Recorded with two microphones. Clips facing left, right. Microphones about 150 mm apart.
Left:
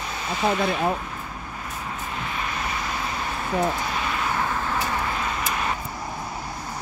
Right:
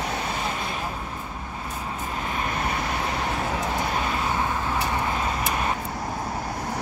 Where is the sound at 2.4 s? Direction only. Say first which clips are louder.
Right 3 dB; 50° right (ahead or behind).